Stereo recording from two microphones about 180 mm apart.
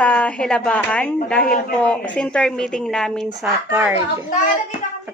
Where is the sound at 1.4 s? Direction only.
55° left (ahead or behind).